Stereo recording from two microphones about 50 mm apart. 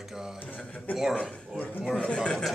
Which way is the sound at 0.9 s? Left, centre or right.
Left.